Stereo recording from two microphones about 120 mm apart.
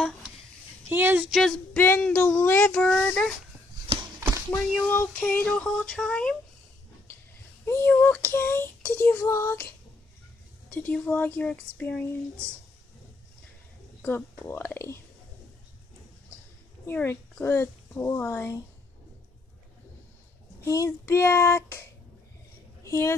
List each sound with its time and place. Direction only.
0.8 s speech: 15° right (ahead or behind)
1.3 s female singing: 5° left (ahead or behind)
1.8 s child singing: 15° left (ahead or behind)
4.8 s child singing: 15° left (ahead or behind)
7.6 s child singing: 20° left (ahead or behind)
14.0 s child singing: 15° left (ahead or behind)
16.8 s a child's voice: 20° left (ahead or behind)
20.6 s a child's voice: 25° left (ahead or behind)
22.8 s a woman's voice: 25° left (ahead or behind)